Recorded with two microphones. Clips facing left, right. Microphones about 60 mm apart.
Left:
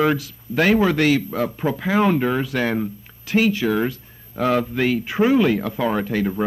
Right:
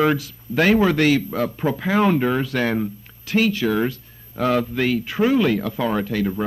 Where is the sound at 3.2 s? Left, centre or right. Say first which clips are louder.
Left 1 dB; centre.